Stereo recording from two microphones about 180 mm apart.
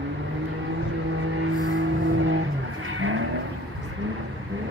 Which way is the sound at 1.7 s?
90° right.